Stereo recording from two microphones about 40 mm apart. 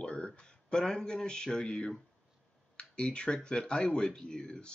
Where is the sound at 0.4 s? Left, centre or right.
Left.